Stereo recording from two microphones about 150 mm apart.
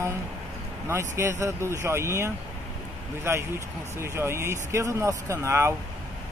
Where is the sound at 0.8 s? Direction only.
20° right (ahead or behind).